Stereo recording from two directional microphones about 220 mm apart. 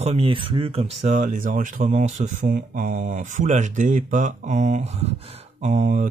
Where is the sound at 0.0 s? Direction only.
25° right (ahead or behind).